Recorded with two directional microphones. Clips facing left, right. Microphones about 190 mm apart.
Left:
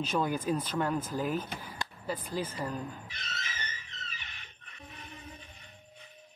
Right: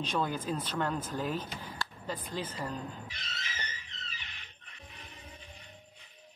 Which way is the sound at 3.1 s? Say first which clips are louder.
Left 2 dB; 50° left (ahead or behind).